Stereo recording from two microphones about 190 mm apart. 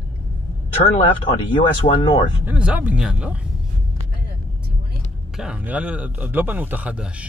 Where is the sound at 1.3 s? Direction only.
30° left (ahead or behind).